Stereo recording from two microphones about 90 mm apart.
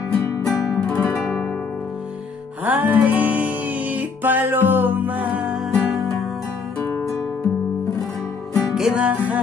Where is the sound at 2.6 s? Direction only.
20° right (ahead or behind).